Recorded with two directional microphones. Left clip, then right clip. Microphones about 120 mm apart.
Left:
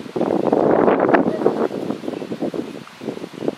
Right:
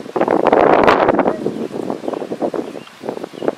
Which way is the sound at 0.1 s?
45° right (ahead or behind).